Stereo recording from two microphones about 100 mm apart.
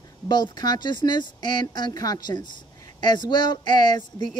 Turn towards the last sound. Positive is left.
turn(degrees=45)  # may be behind; listen again after turning